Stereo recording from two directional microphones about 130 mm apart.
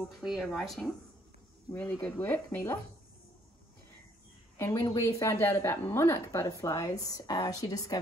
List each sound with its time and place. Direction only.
0.0 s speech: centre (ahead or behind)
1.7 s speech: 10° left (ahead or behind)
4.6 s a woman's voice: 20° left (ahead or behind)